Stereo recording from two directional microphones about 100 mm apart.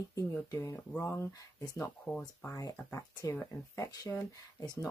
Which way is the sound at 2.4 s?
35° left (ahead or behind).